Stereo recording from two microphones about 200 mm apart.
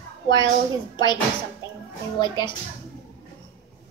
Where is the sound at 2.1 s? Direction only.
20° left (ahead or behind).